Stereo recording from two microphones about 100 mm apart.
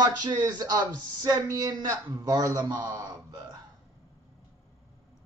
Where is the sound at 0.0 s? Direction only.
45° right (ahead or behind).